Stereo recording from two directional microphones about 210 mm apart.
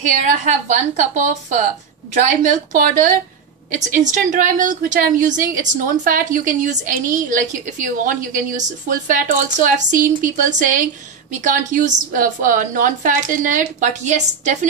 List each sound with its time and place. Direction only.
0.0 s a woman's voice: 35° right (ahead or behind)